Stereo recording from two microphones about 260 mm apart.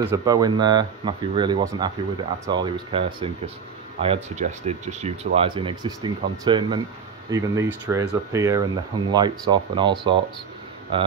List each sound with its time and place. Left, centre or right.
0.0 s speech: centre